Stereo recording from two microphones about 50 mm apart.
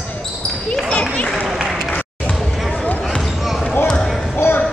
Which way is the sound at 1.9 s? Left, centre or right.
Left.